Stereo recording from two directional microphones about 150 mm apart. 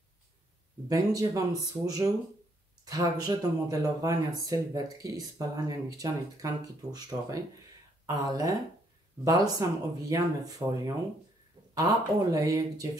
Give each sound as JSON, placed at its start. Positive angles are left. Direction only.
{"t": 0.8, "sound": "speech", "side_deg": -25}
{"t": 11.7, "sound": "speech", "side_deg": -25}